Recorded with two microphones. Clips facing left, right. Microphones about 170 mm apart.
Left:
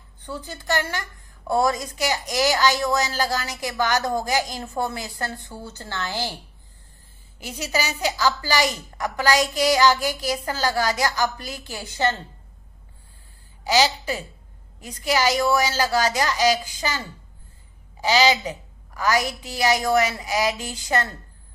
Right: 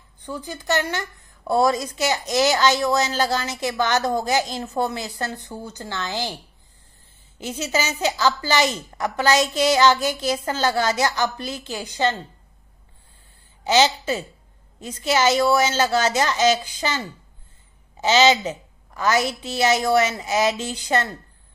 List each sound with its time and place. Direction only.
0.2 s a woman's voice: 15° right (ahead or behind)
7.3 s a woman's voice: 20° right (ahead or behind)
13.7 s a woman's voice: 25° right (ahead or behind)
18.0 s a woman's voice: 25° right (ahead or behind)